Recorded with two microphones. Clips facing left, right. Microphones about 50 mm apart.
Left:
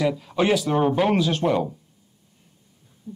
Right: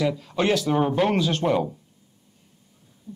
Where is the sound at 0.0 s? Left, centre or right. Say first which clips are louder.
Left 1 dB; centre.